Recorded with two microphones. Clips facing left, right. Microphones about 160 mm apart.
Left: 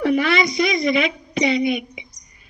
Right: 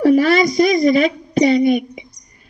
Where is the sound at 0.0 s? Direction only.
40° right (ahead or behind).